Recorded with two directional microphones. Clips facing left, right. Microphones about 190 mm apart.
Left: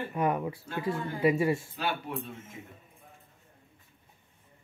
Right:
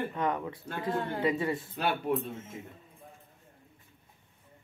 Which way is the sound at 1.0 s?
65° right (ahead or behind).